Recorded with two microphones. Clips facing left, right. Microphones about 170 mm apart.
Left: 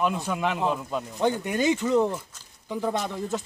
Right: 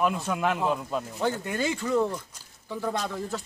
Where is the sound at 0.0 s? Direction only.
Centre (ahead or behind).